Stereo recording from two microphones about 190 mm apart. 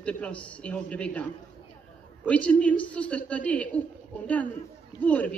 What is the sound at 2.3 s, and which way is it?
A woman's voice, 5° left (ahead or behind).